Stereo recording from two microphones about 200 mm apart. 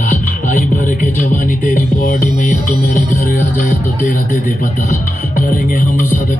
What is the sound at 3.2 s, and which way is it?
Speech, 40° left (ahead or behind).